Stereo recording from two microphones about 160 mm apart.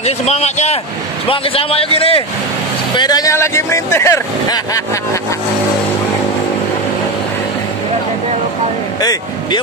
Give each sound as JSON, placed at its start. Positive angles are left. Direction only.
{"t": 0.0, "sound": "a man's voice", "side_deg": 45}
{"t": 3.0, "sound": "speech", "side_deg": 25}